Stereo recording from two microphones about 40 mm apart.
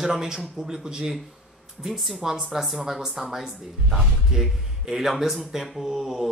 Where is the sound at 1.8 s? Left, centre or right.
Centre.